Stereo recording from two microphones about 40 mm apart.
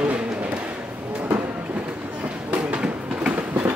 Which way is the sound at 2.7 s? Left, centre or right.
Right.